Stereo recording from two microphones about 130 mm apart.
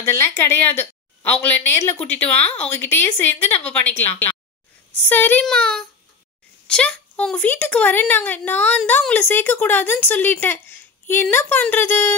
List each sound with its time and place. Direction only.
0.0 s speech: 20° left (ahead or behind)